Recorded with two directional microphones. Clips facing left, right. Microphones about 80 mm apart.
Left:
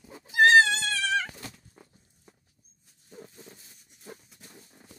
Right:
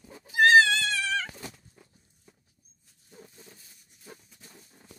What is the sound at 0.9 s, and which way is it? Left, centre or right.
Goat, centre.